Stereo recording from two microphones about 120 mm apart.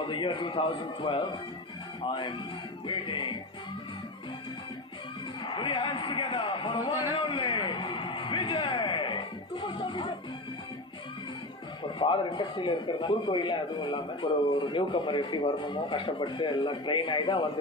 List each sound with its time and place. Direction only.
0.0 s speech: 45° left (ahead or behind)
5.4 s speech: 40° left (ahead or behind)
12.0 s speech: 45° left (ahead or behind)